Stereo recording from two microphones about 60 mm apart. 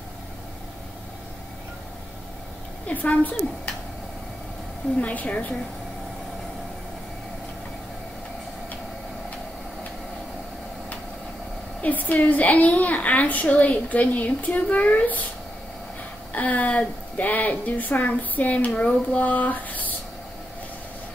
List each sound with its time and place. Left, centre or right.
2.9 s a woman's voice: left
5.0 s a woman's voice: left
11.8 s a woman's voice: left
16.3 s a woman's voice: left